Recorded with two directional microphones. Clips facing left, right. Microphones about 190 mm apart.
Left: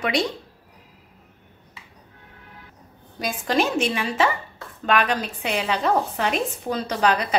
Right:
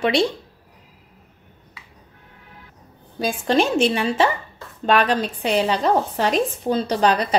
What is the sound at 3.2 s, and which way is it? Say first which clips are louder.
Speech: right 3 dB; 30° right (ahead or behind).